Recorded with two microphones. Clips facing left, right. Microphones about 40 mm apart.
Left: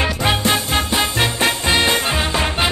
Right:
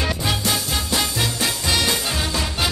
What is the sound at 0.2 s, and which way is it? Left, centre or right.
Music, left.